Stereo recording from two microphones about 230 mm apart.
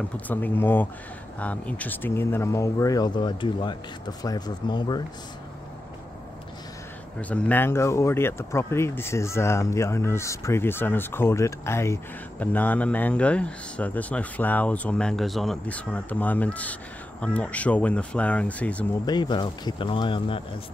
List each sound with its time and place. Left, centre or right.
0.3 s speech: centre
7.2 s speech: centre
19.0 s speech: centre